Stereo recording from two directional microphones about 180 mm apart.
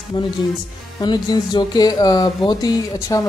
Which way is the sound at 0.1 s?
25° left (ahead or behind).